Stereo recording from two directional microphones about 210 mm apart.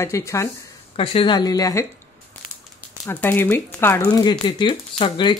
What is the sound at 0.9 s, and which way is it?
Speech, 25° left (ahead or behind).